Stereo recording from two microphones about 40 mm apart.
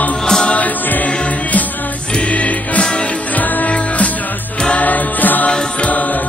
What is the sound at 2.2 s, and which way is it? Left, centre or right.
Music, left.